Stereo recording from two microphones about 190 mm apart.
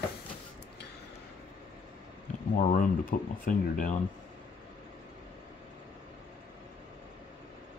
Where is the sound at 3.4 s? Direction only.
45° left (ahead or behind).